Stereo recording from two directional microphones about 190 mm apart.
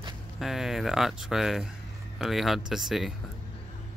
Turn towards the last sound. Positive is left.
turn(degrees=0)  # may be behind; listen again after turning